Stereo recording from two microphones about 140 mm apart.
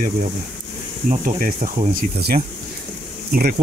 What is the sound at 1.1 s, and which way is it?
Speech, 80° right.